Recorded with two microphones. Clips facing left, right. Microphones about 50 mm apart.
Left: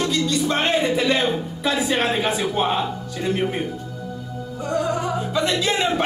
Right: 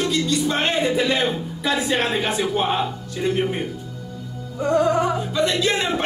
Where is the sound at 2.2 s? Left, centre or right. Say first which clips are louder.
Even; centre.